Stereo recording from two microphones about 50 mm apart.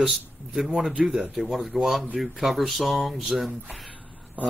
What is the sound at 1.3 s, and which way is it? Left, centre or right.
Speech, centre.